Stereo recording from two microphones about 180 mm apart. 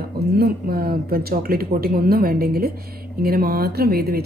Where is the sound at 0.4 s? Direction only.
60° right (ahead or behind).